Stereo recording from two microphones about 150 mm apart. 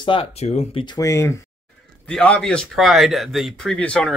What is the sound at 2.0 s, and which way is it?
Speech, 5° left (ahead or behind).